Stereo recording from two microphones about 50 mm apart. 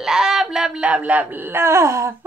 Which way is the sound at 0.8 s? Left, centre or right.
Right.